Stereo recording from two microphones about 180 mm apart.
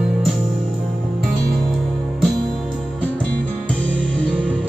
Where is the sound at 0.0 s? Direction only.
Centre (ahead or behind).